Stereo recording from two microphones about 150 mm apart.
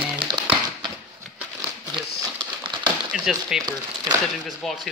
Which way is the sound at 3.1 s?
5° right (ahead or behind).